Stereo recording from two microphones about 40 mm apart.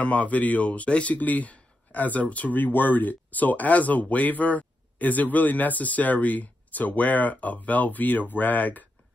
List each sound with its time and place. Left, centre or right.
0.0 s speech: left
2.6 s speech: left